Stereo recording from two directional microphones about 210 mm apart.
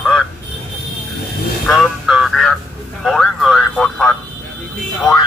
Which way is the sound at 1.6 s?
Centre (ahead or behind).